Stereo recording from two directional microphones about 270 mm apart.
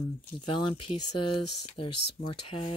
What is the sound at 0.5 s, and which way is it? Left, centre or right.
Speech, centre.